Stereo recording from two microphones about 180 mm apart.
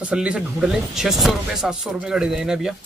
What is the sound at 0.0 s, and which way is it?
Speech, 5° right (ahead or behind).